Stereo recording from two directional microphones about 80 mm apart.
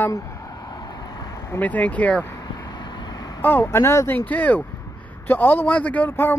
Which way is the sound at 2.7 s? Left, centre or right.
Left.